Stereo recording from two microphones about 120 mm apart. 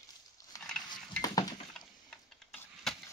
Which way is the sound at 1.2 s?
30° left (ahead or behind).